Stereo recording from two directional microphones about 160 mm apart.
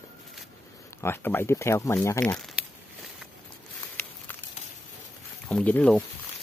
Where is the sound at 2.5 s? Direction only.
Centre (ahead or behind).